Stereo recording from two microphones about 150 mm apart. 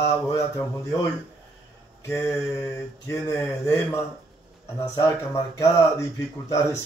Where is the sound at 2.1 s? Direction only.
15° left (ahead or behind).